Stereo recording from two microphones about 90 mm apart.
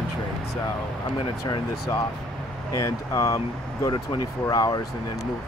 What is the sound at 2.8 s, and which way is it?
Speech, 40° left (ahead or behind).